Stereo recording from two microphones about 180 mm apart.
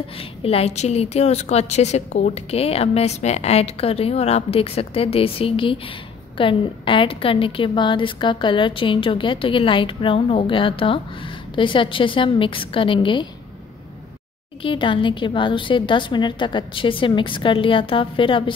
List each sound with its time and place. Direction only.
0.4 s a woman's voice: 35° left (ahead or behind)
14.6 s a woman's voice: 30° left (ahead or behind)